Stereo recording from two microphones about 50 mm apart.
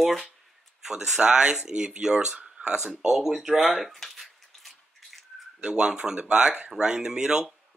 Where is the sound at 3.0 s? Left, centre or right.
Centre.